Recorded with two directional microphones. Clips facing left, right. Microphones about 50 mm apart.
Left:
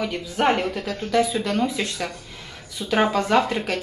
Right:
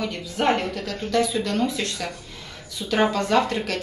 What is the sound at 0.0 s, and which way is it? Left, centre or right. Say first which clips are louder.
Speech: left 2 dB; centre.